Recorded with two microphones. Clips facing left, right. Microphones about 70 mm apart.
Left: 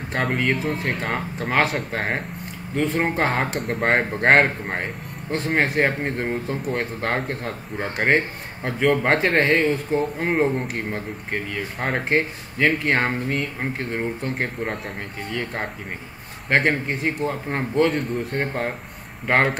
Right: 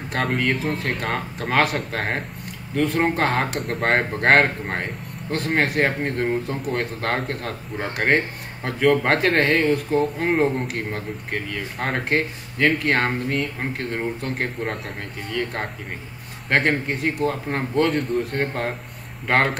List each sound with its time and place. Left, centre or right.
0.1 s speech: centre
17.2 s speech: centre
18.4 s speech: centre